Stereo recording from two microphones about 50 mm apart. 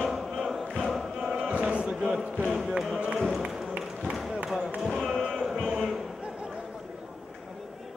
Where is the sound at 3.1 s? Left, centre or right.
Centre.